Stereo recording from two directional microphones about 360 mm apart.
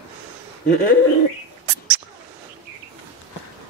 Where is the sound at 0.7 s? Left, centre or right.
Left.